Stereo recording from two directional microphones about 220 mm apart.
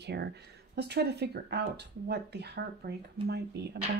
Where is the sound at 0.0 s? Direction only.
50° right (ahead or behind).